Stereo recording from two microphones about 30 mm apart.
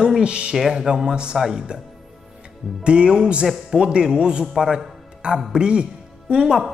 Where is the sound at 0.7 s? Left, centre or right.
Right.